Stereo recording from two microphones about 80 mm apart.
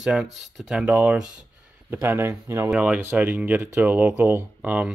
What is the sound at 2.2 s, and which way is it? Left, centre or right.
Speech, right.